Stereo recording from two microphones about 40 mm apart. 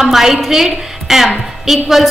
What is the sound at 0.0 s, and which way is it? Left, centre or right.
A woman's voice, centre.